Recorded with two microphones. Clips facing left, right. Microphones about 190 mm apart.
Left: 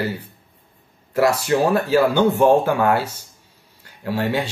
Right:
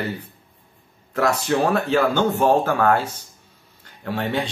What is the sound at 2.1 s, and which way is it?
Speech, 40° right (ahead or behind).